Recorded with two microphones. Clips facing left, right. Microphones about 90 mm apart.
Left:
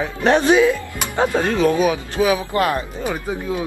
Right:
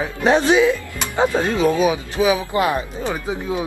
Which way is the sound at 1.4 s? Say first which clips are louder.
Left 2 dB; 15° right (ahead or behind).